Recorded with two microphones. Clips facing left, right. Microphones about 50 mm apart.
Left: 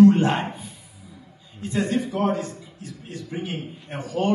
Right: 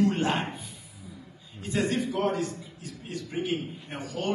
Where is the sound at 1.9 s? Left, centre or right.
Left.